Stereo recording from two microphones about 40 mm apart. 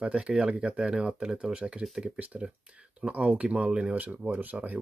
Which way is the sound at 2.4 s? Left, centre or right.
Right.